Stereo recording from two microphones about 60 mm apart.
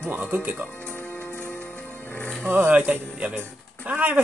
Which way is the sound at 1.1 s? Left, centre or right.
Left.